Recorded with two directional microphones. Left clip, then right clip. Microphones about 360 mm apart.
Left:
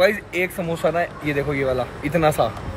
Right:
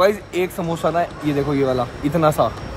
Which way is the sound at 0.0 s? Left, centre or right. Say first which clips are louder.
Right 1 dB; centre.